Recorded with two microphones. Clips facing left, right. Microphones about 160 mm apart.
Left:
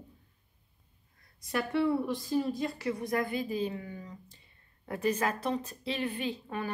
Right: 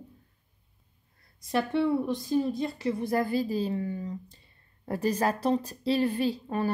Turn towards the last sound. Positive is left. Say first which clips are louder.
# right 7 dB
turn(degrees=-35)  # may be behind; listen again after turning